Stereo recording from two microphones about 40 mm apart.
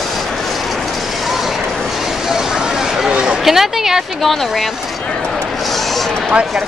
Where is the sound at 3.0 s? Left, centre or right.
Centre.